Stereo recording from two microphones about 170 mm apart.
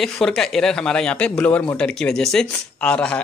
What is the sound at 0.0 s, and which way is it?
Speech, centre (ahead or behind).